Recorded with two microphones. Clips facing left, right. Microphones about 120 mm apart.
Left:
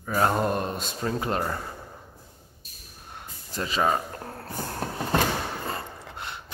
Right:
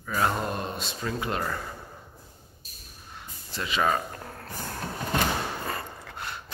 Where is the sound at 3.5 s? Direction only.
35° left (ahead or behind).